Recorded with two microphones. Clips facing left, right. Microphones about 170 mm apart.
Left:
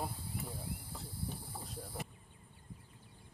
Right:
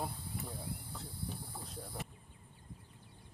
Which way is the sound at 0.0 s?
5° left (ahead or behind).